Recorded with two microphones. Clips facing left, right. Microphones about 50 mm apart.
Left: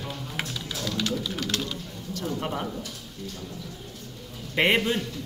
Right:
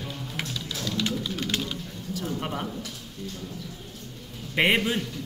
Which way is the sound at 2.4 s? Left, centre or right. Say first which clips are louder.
Left 1 dB; centre.